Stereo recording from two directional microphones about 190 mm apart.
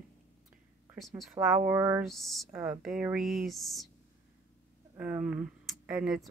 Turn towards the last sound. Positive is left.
turn(degrees=-5)  # may be behind; listen again after turning